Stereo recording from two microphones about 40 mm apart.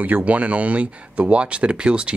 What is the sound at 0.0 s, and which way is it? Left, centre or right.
Speech, right.